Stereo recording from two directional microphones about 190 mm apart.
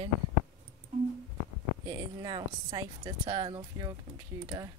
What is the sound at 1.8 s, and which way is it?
Speech, 20° right (ahead or behind).